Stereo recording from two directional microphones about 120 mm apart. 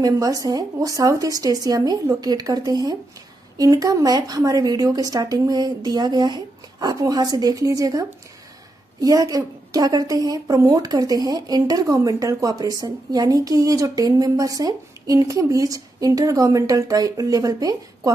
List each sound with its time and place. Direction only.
0.0 s a woman's voice: 30° right (ahead or behind)